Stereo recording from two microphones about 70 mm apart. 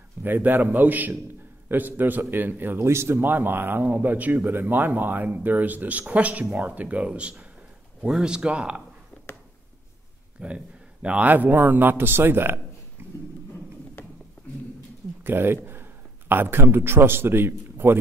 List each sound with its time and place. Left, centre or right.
0.2 s a man's voice: right
10.4 s a man's voice: centre; by 12.5 s right
15.2 s a man's voice: right